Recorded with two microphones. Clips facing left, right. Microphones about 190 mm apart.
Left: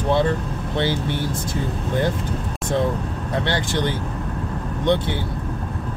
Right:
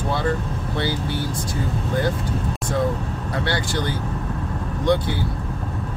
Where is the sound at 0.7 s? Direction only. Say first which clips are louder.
Left 3 dB; 20° left (ahead or behind).